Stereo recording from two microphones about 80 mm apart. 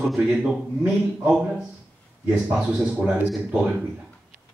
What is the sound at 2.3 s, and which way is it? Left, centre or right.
Speech, centre.